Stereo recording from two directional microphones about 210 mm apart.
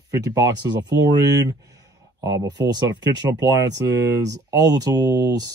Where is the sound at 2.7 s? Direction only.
20° right (ahead or behind).